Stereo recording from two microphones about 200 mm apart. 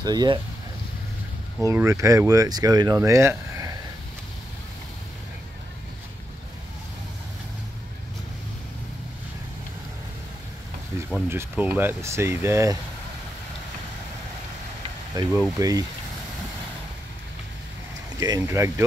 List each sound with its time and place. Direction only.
0.0 s speech: 20° right (ahead or behind)
1.6 s speech: 15° right (ahead or behind)
11.2 s speech: 10° right (ahead or behind)
15.2 s speech: 20° right (ahead or behind)
18.2 s speech: 15° right (ahead or behind)